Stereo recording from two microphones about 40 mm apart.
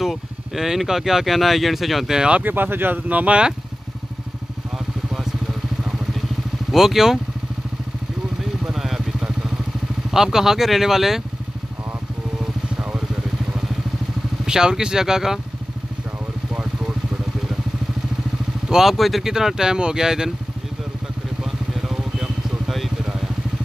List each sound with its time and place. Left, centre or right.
0.0 s speech: centre
2.4 s speech: right
3.1 s speech: right
4.7 s vehicle: centre
6.7 s speech: centre
8.6 s vehicle: centre
10.1 s speech: centre
12.4 s vehicle: centre
14.4 s speech: centre
18.7 s speech: centre
21.5 s vehicle: centre